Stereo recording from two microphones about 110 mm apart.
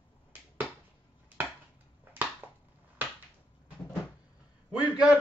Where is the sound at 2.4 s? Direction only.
20° right (ahead or behind).